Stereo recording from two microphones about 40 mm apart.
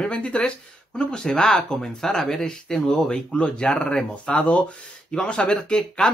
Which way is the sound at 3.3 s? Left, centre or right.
Left.